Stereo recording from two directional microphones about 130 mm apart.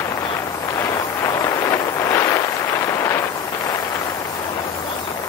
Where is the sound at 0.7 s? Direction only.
20° left (ahead or behind).